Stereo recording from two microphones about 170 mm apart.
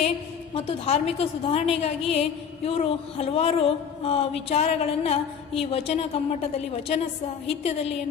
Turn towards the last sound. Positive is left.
turn(degrees=35)  # may be behind; listen again after turning